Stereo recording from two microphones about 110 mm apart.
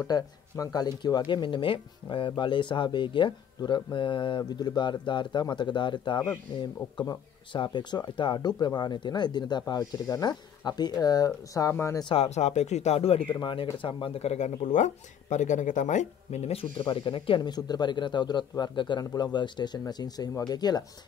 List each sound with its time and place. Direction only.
0.0 s speech: 35° left (ahead or behind)
12.2 s speech: 90° left; by 13.3 s 65° left (ahead or behind)
13.3 s speech: 45° left (ahead or behind); by 16.6 s 75° left (ahead or behind)
16.7 s speech: 50° left (ahead or behind)